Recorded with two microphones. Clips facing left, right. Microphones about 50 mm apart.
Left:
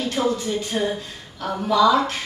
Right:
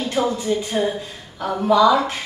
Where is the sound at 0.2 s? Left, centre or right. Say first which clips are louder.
Right 3 dB; centre.